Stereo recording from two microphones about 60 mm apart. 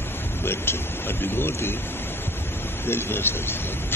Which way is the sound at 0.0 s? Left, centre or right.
Left.